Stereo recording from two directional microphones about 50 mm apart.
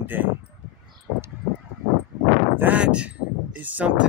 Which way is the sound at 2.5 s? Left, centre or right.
Right.